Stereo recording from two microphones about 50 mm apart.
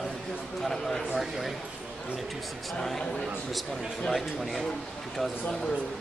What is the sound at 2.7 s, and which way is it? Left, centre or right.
A man's voice, centre.